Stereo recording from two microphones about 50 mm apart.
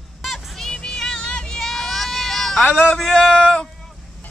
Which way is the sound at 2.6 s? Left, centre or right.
Left.